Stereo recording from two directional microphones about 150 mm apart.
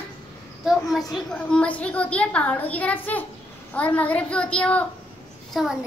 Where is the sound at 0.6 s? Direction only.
Centre (ahead or behind).